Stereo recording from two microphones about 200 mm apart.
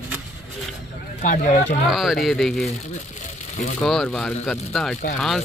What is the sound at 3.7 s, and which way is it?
Speech, centre (ahead or behind).